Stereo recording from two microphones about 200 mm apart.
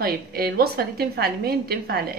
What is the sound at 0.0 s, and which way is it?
A woman's voice, 50° right (ahead or behind).